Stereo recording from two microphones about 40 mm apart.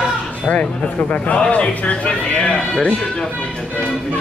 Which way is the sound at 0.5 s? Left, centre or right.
Left.